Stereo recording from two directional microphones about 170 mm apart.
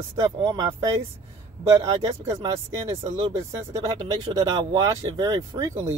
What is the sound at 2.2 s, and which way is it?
Speech, 15° right (ahead or behind).